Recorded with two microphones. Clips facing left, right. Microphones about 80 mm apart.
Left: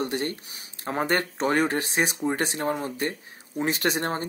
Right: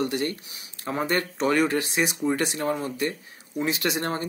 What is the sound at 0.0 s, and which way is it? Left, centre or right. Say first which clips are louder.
Speech: right 2 dB; left.